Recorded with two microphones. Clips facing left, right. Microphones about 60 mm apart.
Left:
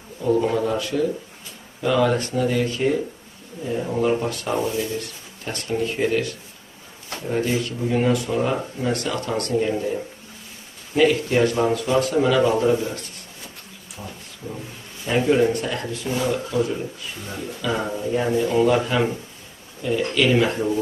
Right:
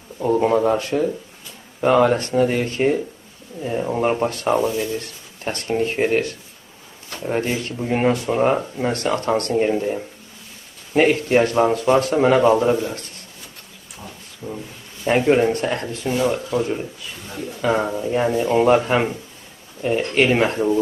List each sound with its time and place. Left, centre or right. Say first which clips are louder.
0.2 s speech: right 3 dB; right
4.0 s speech: right 2 dB; right
11.0 s speech: right 2 dB; right
14.4 s speech: right 3 dB; right